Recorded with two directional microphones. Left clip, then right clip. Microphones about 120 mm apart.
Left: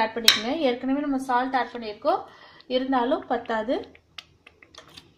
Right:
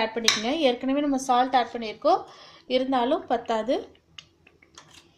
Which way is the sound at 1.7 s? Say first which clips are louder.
Right 3 dB; 50° right (ahead or behind).